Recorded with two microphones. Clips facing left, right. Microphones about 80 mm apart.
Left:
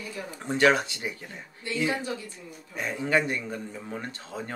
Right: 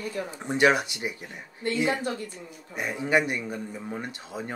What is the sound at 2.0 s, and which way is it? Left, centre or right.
Speech, right.